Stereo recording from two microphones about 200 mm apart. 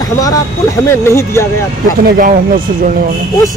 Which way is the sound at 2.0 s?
45° right (ahead or behind).